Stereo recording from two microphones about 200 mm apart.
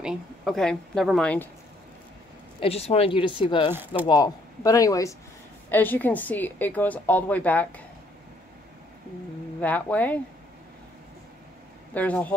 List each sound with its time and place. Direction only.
0.0 s a woman's voice: centre (ahead or behind)
2.6 s speech: 30° left (ahead or behind)
3.7 s speech: 10° right (ahead or behind)
4.0 s a woman's voice: 20° left (ahead or behind)
9.6 s a woman's voice: 10° left (ahead or behind)
11.9 s a woman's voice: 10° left (ahead or behind)